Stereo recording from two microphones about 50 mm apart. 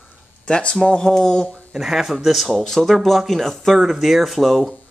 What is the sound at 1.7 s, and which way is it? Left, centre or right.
Speech, centre.